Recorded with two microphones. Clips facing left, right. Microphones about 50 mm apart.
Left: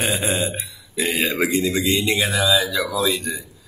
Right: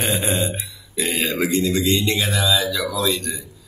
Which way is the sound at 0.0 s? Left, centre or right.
Centre.